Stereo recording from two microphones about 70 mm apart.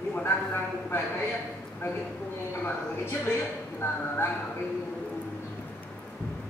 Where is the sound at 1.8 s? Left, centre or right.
Left.